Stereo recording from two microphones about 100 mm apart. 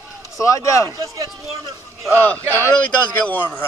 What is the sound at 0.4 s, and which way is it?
Speech, 30° left (ahead or behind).